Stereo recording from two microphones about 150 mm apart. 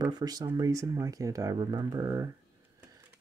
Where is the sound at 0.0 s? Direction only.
25° right (ahead or behind).